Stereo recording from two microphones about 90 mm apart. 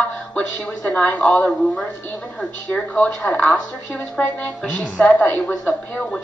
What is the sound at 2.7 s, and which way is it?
A woman's voice, 10° left (ahead or behind).